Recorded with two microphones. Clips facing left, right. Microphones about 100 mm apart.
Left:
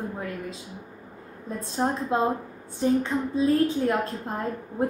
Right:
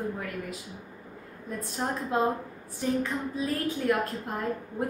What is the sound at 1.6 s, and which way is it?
A woman's voice, 25° left (ahead or behind).